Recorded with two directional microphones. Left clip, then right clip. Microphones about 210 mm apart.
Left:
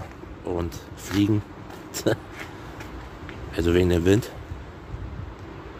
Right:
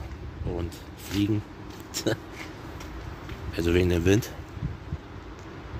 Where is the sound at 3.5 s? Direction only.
10° left (ahead or behind).